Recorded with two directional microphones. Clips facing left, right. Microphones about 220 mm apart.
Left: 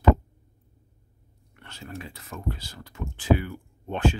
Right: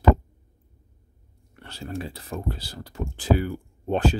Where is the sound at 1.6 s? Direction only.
35° right (ahead or behind).